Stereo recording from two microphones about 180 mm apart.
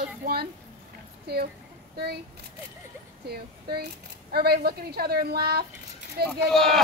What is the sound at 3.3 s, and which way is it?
A woman's voice, 60° right (ahead or behind).